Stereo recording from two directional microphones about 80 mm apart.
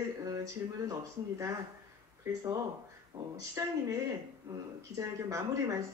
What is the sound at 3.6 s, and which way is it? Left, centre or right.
Speech, right.